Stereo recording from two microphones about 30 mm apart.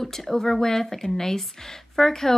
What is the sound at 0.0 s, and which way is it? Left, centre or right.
Speech, centre.